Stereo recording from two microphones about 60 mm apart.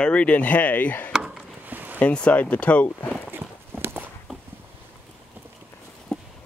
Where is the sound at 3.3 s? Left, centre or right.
Right.